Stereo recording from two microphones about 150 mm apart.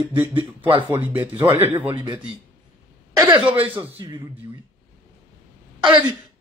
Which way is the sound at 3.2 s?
30° right (ahead or behind).